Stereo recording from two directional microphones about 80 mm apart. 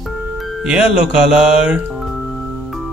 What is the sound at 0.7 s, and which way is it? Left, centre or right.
Speech, centre.